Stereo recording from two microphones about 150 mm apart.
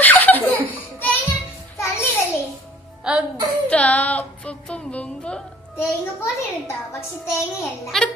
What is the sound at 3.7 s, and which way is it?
A woman's voice, 10° left (ahead or behind).